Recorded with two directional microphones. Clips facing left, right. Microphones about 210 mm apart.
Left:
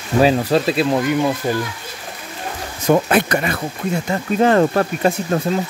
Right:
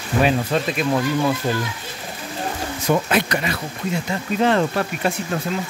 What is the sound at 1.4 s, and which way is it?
Speech, 10° left (ahead or behind).